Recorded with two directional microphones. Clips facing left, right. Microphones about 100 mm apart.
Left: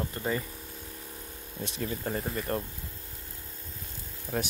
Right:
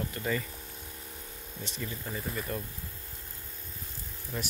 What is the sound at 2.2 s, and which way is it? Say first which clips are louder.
Speech: left 1 dB; 45° left (ahead or behind).